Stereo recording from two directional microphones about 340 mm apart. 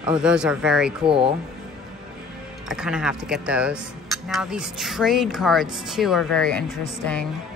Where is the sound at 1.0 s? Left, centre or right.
Centre.